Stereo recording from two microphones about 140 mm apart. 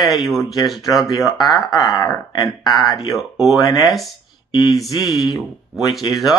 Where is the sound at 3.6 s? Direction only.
25° left (ahead or behind).